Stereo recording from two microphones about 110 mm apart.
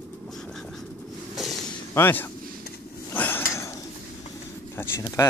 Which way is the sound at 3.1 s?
15° left (ahead or behind).